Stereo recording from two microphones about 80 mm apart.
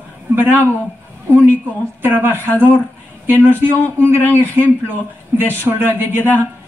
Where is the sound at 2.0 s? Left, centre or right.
Right.